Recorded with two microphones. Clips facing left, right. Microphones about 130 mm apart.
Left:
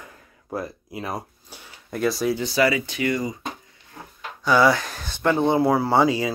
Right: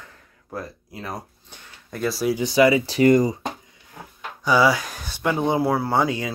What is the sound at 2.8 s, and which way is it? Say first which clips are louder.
Speech: right 8 dB; 40° right (ahead or behind).